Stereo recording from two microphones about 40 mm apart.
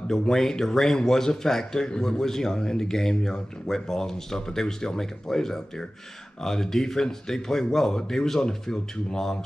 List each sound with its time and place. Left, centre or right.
0.1 s speech: centre